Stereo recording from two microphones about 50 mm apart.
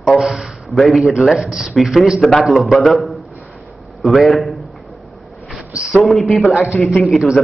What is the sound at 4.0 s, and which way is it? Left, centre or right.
Speech, centre.